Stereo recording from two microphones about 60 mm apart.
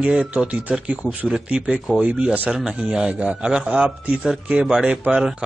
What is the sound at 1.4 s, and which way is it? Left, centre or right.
A man's voice, centre.